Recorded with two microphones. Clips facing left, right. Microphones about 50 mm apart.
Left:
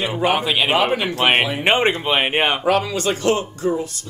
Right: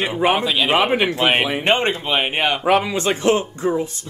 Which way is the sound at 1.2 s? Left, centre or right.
Centre.